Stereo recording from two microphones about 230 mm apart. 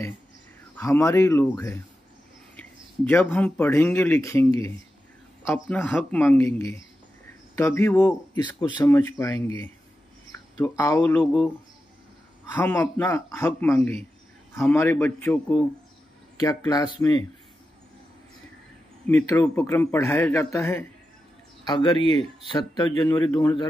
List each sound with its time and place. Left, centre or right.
0.7 s speech: centre
3.1 s speech: centre
12.5 s speech: centre
19.0 s speech: centre